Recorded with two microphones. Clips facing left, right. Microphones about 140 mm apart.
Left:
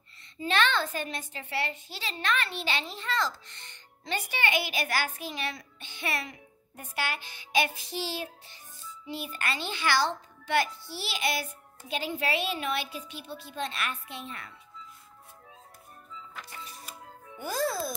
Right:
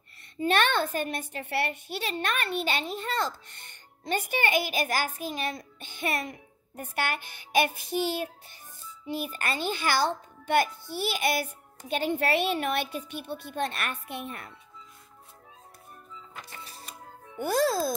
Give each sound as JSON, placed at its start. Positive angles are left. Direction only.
{"t": 0.4, "sound": "a child's voice", "side_deg": -55}
{"t": 16.6, "sound": "music", "side_deg": -30}
{"t": 17.4, "sound": "a child's voice", "side_deg": -65}